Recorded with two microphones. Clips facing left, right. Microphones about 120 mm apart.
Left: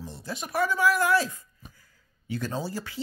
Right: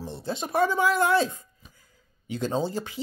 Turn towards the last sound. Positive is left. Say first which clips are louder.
# right 5 dB
turn(degrees=-20)  # may be behind; listen again after turning